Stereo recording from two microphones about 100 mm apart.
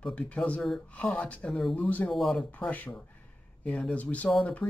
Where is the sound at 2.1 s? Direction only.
5° left (ahead or behind).